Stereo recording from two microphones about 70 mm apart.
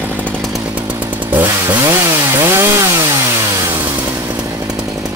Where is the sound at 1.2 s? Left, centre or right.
Right.